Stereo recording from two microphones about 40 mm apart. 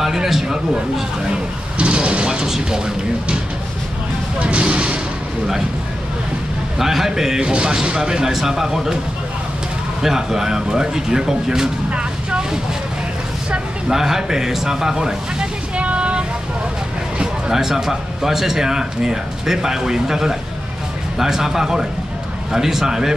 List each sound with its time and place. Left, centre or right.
0.0 s a man's voice: centre
1.3 s speech: right
4.4 s speech: right
6.8 s speech: centre
10.0 s speech: centre
11.9 s vehicle: right
13.8 s speech: centre
15.7 s a sound: right
17.2 s speech: centre